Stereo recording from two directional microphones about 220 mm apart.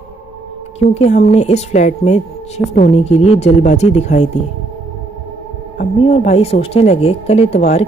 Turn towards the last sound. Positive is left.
turn(degrees=30)  # may be behind; listen again after turning